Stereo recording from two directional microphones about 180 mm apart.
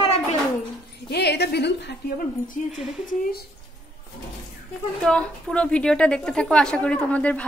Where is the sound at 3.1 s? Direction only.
55° left (ahead or behind).